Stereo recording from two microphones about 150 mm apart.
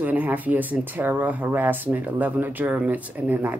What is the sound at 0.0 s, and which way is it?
Speech, 10° right (ahead or behind).